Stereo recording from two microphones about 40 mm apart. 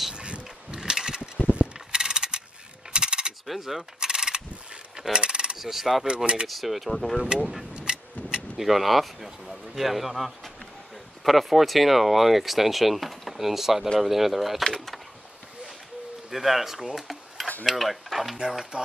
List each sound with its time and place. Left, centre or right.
0.1 s a sound: right
2.0 s mechanisms: centre
2.9 s coin: right
3.4 s keys jangling: centre
4.0 s mechanisms: centre
5.1 s coin: right
5.6 s speech: centre
6.0 s speech: right
6.4 s speech: centre
7.2 s speech: centre
7.7 s a sound: right
8.5 s speech: centre
14.6 s speech: centre
16.3 s speech: centre